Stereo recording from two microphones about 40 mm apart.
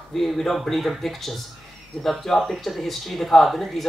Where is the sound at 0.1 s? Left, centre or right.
Centre.